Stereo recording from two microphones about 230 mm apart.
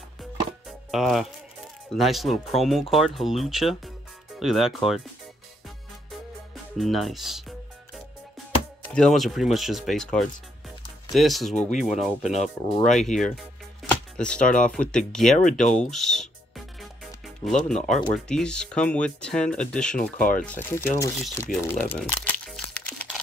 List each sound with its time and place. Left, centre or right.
0.2 s music: centre
2.0 s speech: centre
6.5 s music: centre
8.8 s speech: centre
12.3 s speech: left
12.9 s speech: centre
15.5 s music: centre
18.1 s speech: centre
21.6 s crumpling: centre